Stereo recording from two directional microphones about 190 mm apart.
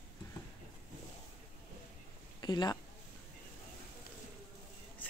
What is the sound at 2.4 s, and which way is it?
Speech, 20° left (ahead or behind).